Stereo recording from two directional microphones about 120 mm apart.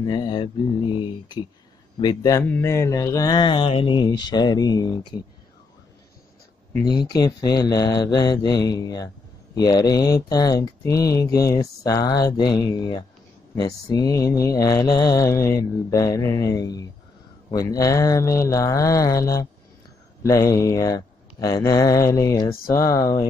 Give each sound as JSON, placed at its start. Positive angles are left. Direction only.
{"t": 0.0, "sound": "speech", "side_deg": 40}
{"t": 2.4, "sound": "speech", "side_deg": 20}
{"t": 6.8, "sound": "speech", "side_deg": 35}
{"t": 13.6, "sound": "mantra", "side_deg": 30}